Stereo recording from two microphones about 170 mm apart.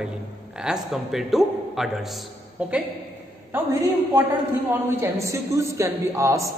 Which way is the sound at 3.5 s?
10° right (ahead or behind).